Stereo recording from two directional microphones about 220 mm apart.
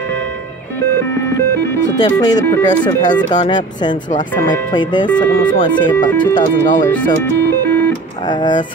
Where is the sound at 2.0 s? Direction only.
20° left (ahead or behind).